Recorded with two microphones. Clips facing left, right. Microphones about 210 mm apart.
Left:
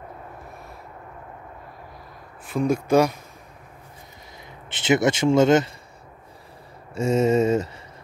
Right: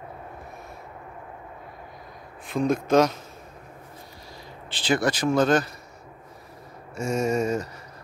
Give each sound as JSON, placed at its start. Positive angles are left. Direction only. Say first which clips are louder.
{"t": 2.5, "sound": "speech", "louder": "left 1 dB", "side_deg": 10}
{"t": 4.6, "sound": "speech", "louder": "left 4 dB", "side_deg": 25}
{"t": 7.0, "sound": "speech", "louder": "left 5 dB", "side_deg": 25}